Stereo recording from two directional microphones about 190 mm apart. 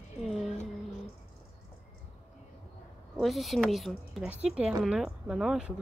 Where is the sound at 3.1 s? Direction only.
Centre (ahead or behind).